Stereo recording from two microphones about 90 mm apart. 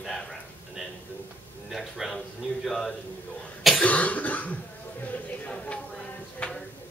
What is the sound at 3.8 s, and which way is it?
Speech, 15° left (ahead or behind).